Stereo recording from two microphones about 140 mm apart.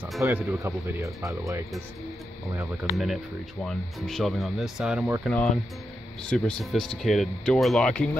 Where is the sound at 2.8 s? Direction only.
Centre (ahead or behind).